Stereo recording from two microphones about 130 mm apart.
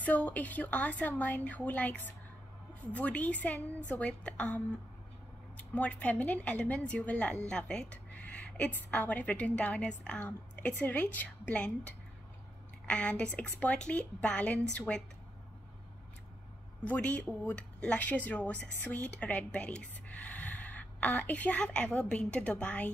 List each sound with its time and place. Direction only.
0.0 s speech: 10° left (ahead or behind)
5.6 s speech: 10° left (ahead or behind)
16.8 s a woman's voice: 10° left (ahead or behind)